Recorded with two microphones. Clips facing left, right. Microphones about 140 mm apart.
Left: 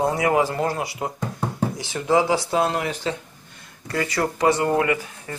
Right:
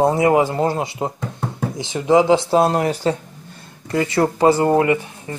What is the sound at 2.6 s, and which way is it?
Speech, 40° right (ahead or behind).